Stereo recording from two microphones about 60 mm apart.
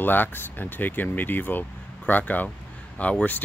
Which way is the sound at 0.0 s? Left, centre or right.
Left.